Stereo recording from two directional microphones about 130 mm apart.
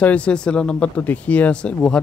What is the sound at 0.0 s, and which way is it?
Speech, 10° left (ahead or behind).